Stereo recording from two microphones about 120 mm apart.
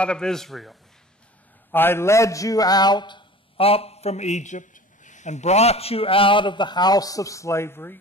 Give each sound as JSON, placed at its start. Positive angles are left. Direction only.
{"t": 0.0, "sound": "speech", "side_deg": 5}
{"t": 1.7, "sound": "a man's voice", "side_deg": 20}